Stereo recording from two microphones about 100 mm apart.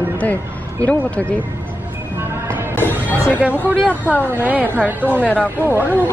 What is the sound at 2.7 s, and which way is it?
Speech, 20° left (ahead or behind).